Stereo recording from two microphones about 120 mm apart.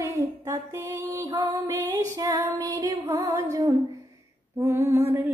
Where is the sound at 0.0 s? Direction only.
25° right (ahead or behind).